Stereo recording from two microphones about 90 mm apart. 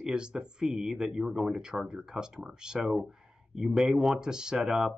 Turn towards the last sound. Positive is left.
turn(degrees=-5)  # may be behind; listen again after turning